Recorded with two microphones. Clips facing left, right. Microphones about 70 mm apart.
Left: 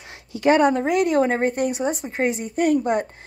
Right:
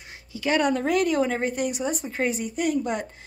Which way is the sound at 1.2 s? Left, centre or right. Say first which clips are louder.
Left 5 dB; left.